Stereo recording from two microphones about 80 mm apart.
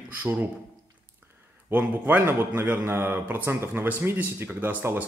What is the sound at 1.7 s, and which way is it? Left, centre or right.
Speech, right.